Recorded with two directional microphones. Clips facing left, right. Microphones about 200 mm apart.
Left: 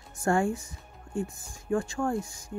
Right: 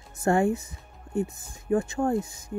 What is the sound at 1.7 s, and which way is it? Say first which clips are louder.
Speech: right 3 dB; 20° right (ahead or behind).